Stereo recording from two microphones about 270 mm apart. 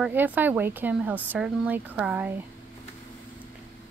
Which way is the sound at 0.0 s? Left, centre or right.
Centre.